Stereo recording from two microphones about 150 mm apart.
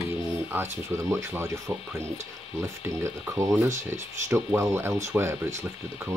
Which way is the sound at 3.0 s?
20° right (ahead or behind).